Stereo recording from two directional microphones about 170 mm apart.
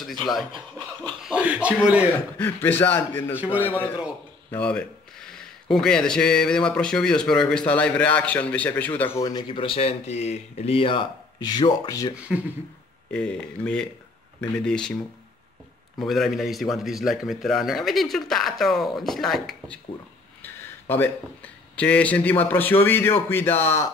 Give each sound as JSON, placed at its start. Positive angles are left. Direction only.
{"t": 0.0, "sound": "a man's voice", "side_deg": 0}
{"t": 2.3, "sound": "a man's voice", "side_deg": 10}
{"t": 3.3, "sound": "a man's voice", "side_deg": -10}
{"t": 3.6, "sound": "a man's voice", "side_deg": 10}
{"t": 9.2, "sound": "speech", "side_deg": 25}
{"t": 12.3, "sound": "speech", "side_deg": 0}
{"t": 16.0, "sound": "speech", "side_deg": 0}
{"t": 20.9, "sound": "a man's voice", "side_deg": 10}